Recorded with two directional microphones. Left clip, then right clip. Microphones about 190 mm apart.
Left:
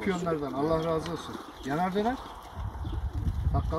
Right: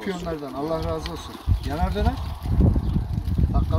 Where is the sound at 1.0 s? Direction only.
40° right (ahead or behind).